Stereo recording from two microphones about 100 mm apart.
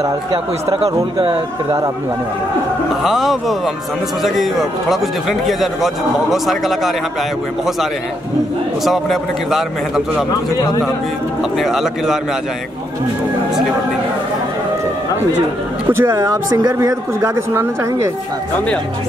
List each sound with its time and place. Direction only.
1.2 s speech: 55° right (ahead or behind)
3.0 s speech: centre (ahead or behind)
8.8 s speech: centre (ahead or behind)
10.5 s a man's voice: 40° left (ahead or behind)
11.5 s speech: centre (ahead or behind)
15.9 s speech: 25° right (ahead or behind)